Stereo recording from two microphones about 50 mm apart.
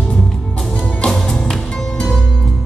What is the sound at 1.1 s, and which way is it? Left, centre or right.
Music, centre.